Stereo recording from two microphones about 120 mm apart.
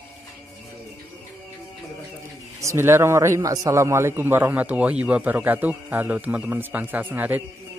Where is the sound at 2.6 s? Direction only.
25° right (ahead or behind).